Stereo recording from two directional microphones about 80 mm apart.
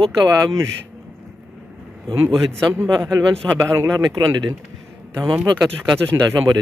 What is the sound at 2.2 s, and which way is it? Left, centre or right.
Speech, right.